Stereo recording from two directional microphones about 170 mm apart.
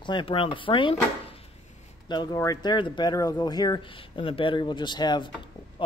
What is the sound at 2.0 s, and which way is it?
Speech, 20° left (ahead or behind).